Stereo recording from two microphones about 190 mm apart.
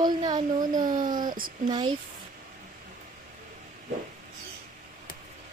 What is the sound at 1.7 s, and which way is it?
Speech, 25° right (ahead or behind).